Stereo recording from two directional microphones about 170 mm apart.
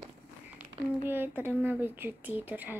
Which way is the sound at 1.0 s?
10° right (ahead or behind).